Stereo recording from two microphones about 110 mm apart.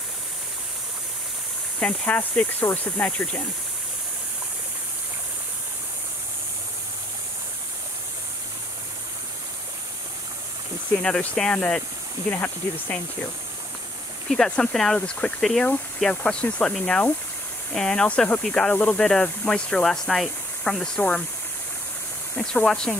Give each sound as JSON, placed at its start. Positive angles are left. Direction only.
{"t": 1.8, "sound": "speech", "side_deg": 15}
{"t": 11.0, "sound": "speech", "side_deg": 10}
{"t": 14.3, "sound": "speech", "side_deg": 5}
{"t": 22.3, "sound": "speech", "side_deg": 10}